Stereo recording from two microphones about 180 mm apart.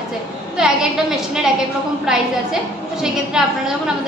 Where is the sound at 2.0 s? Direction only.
5° right (ahead or behind).